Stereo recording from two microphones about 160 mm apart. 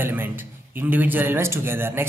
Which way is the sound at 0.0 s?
15° right (ahead or behind).